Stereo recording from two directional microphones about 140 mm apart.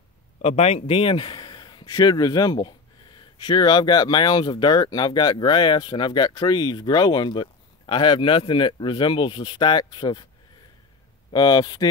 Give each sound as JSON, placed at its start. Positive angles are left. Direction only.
{"t": 0.4, "sound": "a man's voice", "side_deg": 50}
{"t": 11.3, "sound": "speech", "side_deg": 30}